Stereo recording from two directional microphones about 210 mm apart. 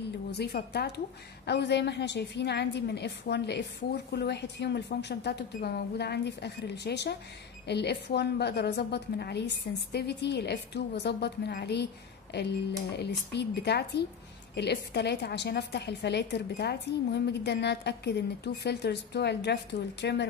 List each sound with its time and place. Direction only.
0.3 s a woman's voice: 50° left (ahead or behind)